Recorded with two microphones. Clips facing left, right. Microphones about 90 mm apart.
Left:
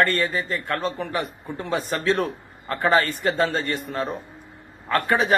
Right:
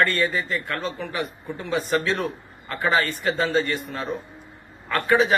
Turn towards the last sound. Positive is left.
turn(degrees=45)  # may be behind; listen again after turning